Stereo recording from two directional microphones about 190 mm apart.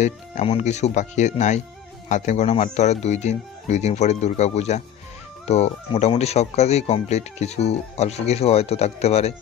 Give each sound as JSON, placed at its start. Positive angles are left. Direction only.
{"t": 0.0, "sound": "speech", "side_deg": 35}